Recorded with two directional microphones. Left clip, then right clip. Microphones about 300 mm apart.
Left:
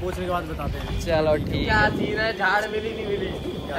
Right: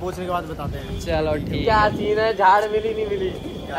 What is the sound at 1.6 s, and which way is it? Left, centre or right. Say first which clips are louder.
Speech: right 5 dB; right.